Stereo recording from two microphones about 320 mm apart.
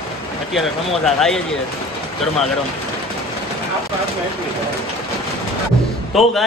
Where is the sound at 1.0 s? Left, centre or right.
Centre.